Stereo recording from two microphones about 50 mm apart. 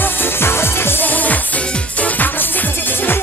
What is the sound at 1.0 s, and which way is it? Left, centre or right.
Music, left.